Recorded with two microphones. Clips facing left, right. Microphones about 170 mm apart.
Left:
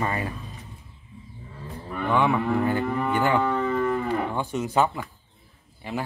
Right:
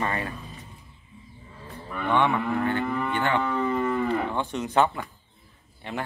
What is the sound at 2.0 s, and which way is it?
Moo, 5° left (ahead or behind).